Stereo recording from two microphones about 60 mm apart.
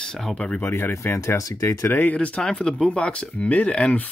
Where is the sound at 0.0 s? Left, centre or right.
Centre.